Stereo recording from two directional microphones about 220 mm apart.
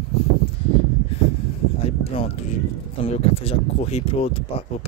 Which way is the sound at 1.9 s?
25° left (ahead or behind).